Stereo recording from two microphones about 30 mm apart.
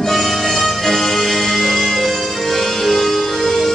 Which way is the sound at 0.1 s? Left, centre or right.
Centre.